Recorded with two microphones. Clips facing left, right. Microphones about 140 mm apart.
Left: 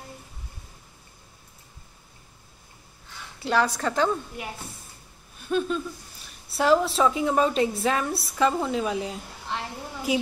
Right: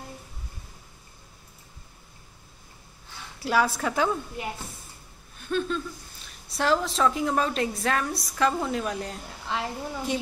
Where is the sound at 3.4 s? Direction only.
5° right (ahead or behind).